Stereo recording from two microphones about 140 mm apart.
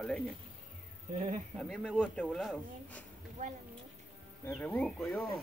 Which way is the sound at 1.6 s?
5° left (ahead or behind).